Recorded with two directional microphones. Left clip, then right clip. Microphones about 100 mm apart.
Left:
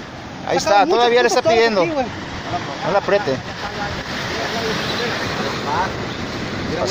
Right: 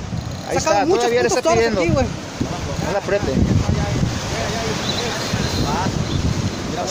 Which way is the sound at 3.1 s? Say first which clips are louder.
Left 2 dB; 10° right (ahead or behind).